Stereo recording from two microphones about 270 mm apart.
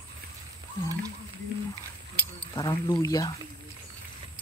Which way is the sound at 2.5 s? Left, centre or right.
Centre.